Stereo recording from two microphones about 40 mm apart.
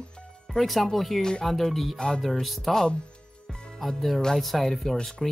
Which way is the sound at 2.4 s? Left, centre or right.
Centre.